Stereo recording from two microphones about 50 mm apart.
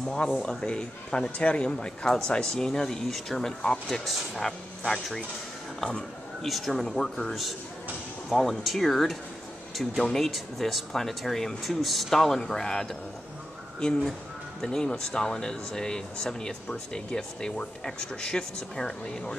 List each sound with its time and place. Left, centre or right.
0.0 s speech: centre
6.4 s speech: centre
14.6 s speech: centre